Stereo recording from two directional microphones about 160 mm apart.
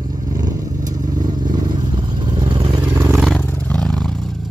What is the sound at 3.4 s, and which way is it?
Vehicle, 10° left (ahead or behind).